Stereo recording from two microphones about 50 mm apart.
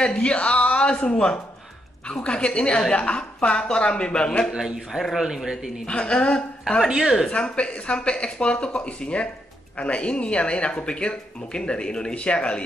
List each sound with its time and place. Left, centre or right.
0.0 s a woman's voice: left
4.5 s a man's voice: centre
5.9 s speech: centre